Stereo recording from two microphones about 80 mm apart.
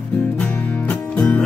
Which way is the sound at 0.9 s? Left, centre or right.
Centre.